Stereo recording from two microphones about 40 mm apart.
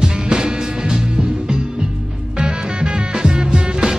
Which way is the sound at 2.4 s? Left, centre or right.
Right.